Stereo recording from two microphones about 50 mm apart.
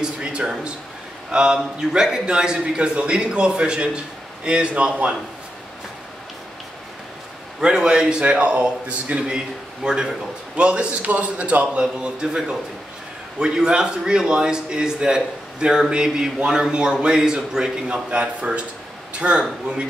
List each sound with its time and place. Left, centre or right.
0.2 s a sound: centre
1.3 s a man's voice: centre
7.6 s a man's voice: centre